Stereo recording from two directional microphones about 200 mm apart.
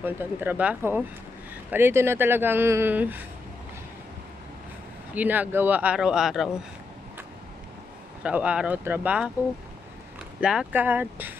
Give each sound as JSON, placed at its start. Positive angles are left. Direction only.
{"t": 0.0, "sound": "speech", "side_deg": -10}
{"t": 5.1, "sound": "speech", "side_deg": -10}
{"t": 8.2, "sound": "speech", "side_deg": -5}
{"t": 10.4, "sound": "speech", "side_deg": -5}